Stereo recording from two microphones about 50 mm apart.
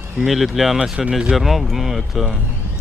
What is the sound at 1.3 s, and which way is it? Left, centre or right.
Speech, centre.